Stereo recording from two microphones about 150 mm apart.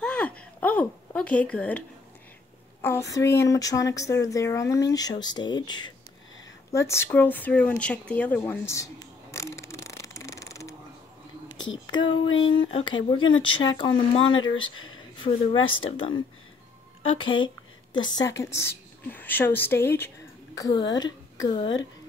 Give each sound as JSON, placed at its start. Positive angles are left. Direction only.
{"t": 0.0, "sound": "a sound", "side_deg": 10}
{"t": 2.8, "sound": "speech", "side_deg": 20}
{"t": 6.7, "sound": "a sound", "side_deg": 20}
{"t": 11.6, "sound": "speech", "side_deg": 30}
{"t": 17.9, "sound": "a woman's voice", "side_deg": 30}
{"t": 20.5, "sound": "a woman's voice", "side_deg": 25}